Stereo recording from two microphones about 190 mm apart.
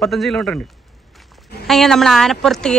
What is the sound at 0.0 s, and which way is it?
Speech, centre (ahead or behind).